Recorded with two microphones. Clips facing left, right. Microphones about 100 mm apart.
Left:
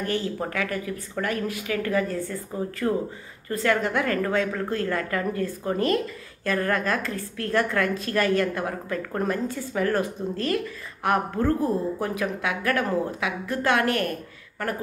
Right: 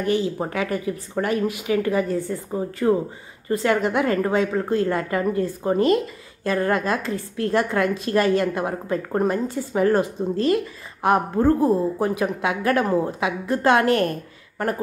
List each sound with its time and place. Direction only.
0.0 s speech: 15° right (ahead or behind)